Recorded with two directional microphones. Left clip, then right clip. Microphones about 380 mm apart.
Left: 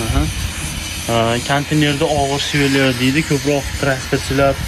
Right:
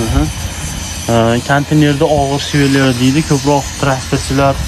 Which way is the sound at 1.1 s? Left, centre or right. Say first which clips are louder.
Right 4 dB; centre.